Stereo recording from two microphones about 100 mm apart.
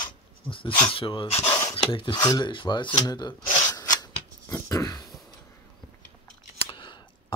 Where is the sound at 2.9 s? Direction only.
45° left (ahead or behind).